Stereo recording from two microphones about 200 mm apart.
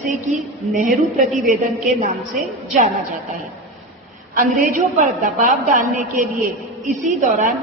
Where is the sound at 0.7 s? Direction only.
Centre (ahead or behind).